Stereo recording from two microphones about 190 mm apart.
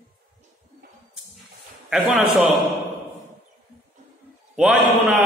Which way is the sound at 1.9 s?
5° right (ahead or behind).